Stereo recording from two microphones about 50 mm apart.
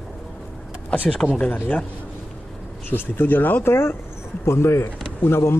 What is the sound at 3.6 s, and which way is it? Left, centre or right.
Speech, left.